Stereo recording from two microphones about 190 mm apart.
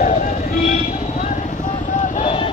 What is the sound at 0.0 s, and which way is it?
Vehicle, 40° left (ahead or behind).